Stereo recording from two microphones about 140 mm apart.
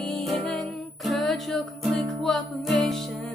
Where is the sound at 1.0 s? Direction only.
Centre (ahead or behind).